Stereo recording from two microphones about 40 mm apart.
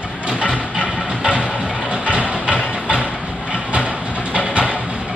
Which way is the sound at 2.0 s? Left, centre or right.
Right.